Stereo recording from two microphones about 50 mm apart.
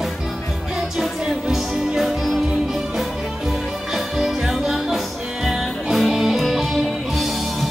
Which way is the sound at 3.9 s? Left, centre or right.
Centre.